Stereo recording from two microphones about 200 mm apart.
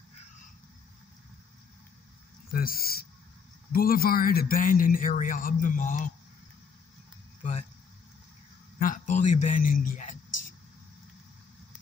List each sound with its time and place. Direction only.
2.5 s speech: 45° left (ahead or behind)
8.7 s a man's voice: 40° left (ahead or behind)